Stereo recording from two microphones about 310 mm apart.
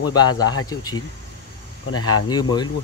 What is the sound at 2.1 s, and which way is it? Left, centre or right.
Speech, centre.